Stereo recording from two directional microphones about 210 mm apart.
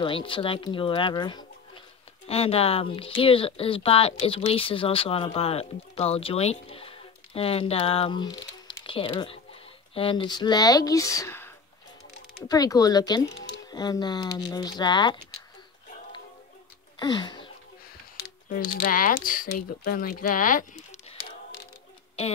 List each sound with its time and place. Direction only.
0.0 s speech: 25° left (ahead or behind)
17.0 s a sound: 20° left (ahead or behind)
18.7 s speech: 40° left (ahead or behind)